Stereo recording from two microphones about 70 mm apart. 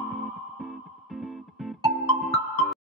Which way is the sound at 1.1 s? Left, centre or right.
Centre.